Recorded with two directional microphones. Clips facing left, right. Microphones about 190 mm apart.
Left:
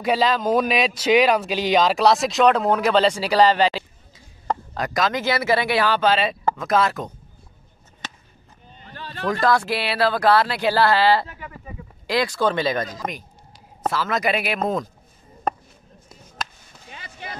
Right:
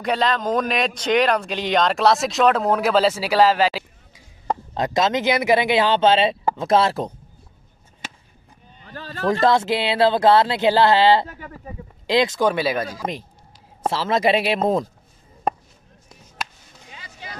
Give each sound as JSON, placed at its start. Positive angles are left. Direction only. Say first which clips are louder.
{"t": 0.0, "sound": "a man's voice", "louder": "left 1 dB", "side_deg": 5}
{"t": 4.7, "sound": "speech", "louder": "right 4 dB", "side_deg": -25}
{"t": 8.0, "sound": "chop", "louder": "even", "side_deg": -10}
{"t": 8.9, "sound": "a sound", "louder": "right 3 dB", "side_deg": -40}
{"t": 9.3, "sound": "speech", "louder": "right 2 dB", "side_deg": -25}
{"t": 11.2, "sound": "speech", "louder": "right 2 dB", "side_deg": -40}
{"t": 12.1, "sound": "speech", "louder": "right 3 dB", "side_deg": -20}
{"t": 13.8, "sound": "speech", "louder": "right 3 dB", "side_deg": -30}
{"t": 16.9, "sound": "a sound", "louder": "left 3 dB", "side_deg": 55}